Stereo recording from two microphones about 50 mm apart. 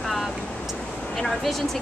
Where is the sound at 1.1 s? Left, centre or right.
Centre.